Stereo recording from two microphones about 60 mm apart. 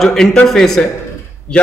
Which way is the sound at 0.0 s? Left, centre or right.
Centre.